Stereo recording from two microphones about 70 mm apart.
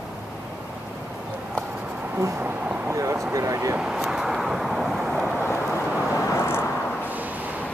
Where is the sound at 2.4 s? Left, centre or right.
Right.